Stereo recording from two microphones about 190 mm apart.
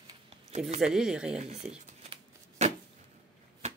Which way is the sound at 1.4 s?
35° right (ahead or behind).